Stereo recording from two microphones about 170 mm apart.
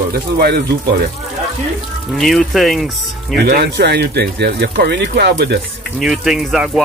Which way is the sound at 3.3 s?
65° right (ahead or behind).